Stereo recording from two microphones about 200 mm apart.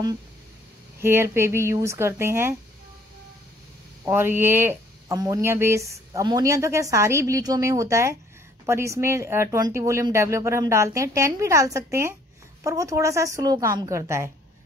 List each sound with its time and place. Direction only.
1.0 s speech: 10° right (ahead or behind)
4.0 s speech: 10° right (ahead or behind)